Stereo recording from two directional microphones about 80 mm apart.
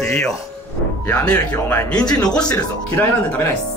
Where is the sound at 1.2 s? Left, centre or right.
Centre.